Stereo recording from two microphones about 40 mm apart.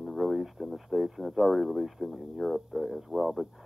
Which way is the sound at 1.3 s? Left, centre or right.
Centre.